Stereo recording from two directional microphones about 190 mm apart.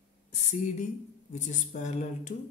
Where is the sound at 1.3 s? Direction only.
40° left (ahead or behind).